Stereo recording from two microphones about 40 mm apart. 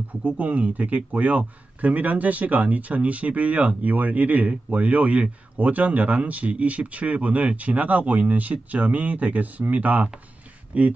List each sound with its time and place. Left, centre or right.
0.4 s speech: right